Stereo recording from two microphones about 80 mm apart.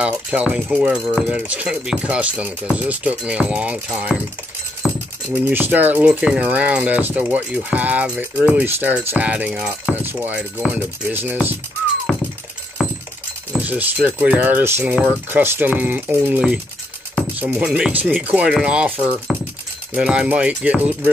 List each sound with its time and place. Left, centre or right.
0.0 s speech: centre
4.8 s keys jangling: centre
5.3 s speech: right
6.0 s speech: centre
12.1 s music: centre
12.8 s a sound: centre
13.6 s keys jangling: centre
14.0 s speech: centre
17.4 s speech: centre
19.3 s a sound: centre
19.9 s speech: centre